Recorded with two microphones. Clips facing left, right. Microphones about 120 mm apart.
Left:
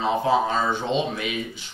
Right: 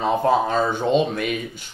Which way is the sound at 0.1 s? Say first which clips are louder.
Right 2 dB; 50° right (ahead or behind).